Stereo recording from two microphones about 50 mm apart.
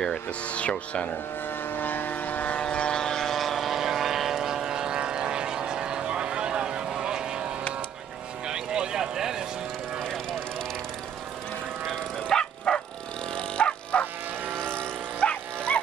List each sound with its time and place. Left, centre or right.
0.5 s speech: left
1.7 s vehicle: left
2.6 s vehicle: centre
8.5 s vehicle: centre
12.3 s bow-wow: centre
14.8 s dog: left